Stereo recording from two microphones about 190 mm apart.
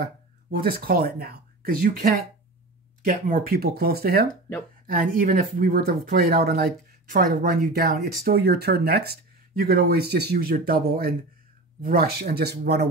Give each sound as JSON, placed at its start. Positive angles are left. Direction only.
{"t": 0.0, "sound": "speech", "side_deg": -50}